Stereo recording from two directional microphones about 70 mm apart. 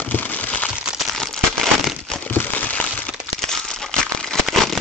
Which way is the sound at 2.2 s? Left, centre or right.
Left.